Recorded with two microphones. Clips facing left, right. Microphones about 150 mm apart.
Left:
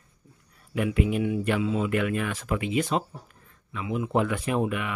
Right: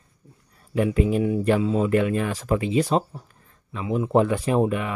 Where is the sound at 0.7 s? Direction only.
35° right (ahead or behind).